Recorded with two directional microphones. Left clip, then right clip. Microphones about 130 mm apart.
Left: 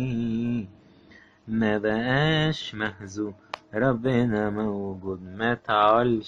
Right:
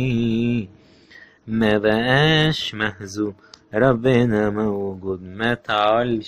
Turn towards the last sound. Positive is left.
turn(degrees=-5)  # may be behind; listen again after turning